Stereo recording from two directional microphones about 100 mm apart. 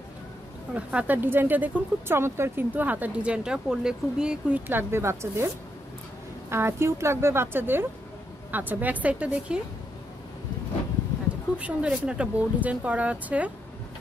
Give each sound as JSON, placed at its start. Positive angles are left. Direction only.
{"t": 0.7, "sound": "speech", "side_deg": -15}
{"t": 4.6, "sound": "a woman's voice", "side_deg": -20}
{"t": 6.5, "sound": "a woman's voice", "side_deg": -25}
{"t": 11.5, "sound": "speech", "side_deg": -10}